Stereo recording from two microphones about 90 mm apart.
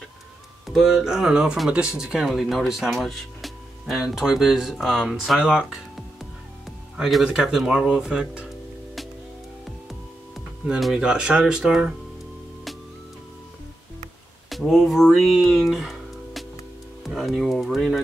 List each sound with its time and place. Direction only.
0.7 s speech: 5° right (ahead or behind)
10.7 s speech: 5° right (ahead or behind)
14.5 s speech: centre (ahead or behind)